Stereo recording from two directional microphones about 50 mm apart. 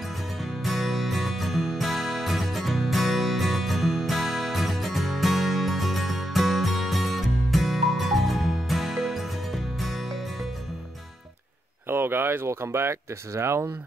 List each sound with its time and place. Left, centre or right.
0.4 s music: centre
11.9 s speech: right
12.4 s speech: right